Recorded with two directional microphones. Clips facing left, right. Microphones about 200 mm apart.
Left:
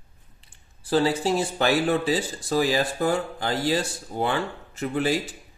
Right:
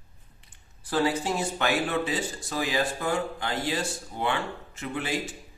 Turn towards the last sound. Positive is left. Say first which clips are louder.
# left 7 dB
turn(degrees=35)  # may be behind; listen again after turning